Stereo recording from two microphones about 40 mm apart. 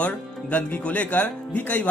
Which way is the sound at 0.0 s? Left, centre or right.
Left.